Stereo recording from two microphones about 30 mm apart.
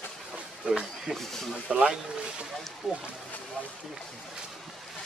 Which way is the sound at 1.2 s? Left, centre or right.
Centre.